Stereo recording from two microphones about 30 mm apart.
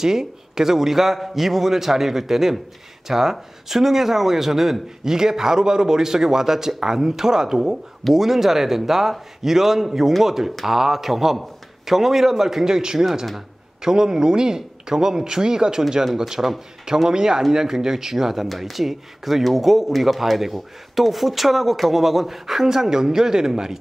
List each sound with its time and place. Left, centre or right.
0.0 s speech: centre